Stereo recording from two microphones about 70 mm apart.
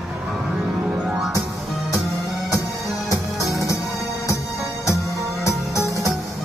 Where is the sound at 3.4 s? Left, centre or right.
Left.